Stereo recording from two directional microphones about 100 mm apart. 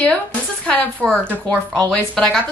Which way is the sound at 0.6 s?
10° left (ahead or behind).